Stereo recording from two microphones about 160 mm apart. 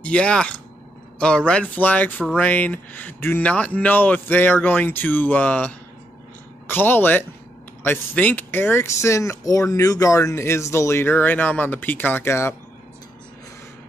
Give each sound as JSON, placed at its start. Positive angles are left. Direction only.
{"t": 0.0, "sound": "speech", "side_deg": 5}